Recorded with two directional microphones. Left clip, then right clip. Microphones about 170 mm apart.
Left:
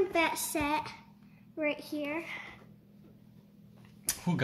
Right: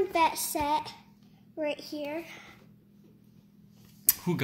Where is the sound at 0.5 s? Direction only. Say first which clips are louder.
Right 3 dB; 20° left (ahead or behind).